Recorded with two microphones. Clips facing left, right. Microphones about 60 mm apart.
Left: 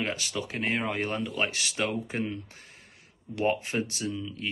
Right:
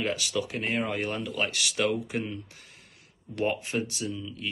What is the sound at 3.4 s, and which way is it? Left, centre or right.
Speech, left.